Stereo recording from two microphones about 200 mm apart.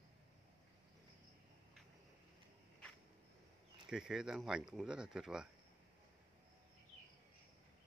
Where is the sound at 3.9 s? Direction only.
Centre (ahead or behind).